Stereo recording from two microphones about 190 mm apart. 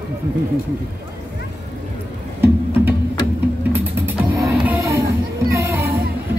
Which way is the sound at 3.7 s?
10° right (ahead or behind).